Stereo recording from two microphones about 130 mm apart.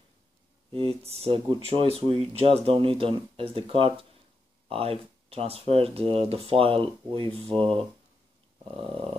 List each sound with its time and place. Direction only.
0.7 s speech: 50° right (ahead or behind)